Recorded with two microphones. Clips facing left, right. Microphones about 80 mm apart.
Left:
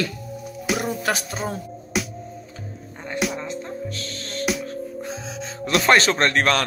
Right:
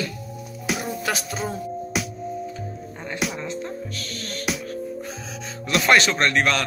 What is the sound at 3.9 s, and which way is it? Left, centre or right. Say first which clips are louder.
Music: left 1 dB; left.